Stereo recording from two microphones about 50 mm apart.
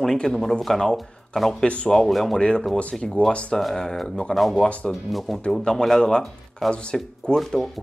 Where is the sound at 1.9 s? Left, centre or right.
Centre.